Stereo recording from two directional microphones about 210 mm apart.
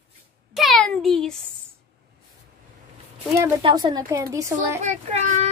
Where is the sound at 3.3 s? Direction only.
15° right (ahead or behind).